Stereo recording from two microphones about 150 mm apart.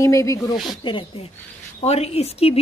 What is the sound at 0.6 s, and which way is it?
Speech, 35° left (ahead or behind).